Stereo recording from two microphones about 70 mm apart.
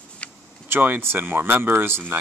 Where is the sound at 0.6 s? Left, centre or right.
Right.